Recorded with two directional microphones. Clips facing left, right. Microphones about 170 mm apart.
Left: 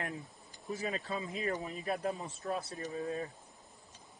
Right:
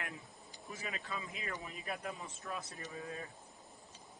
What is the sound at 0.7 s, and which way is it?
Speech, 35° left (ahead or behind).